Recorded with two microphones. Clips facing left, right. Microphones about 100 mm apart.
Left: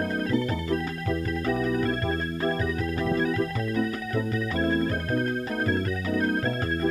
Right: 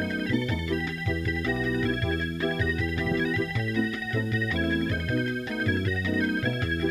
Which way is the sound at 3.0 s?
40° left (ahead or behind).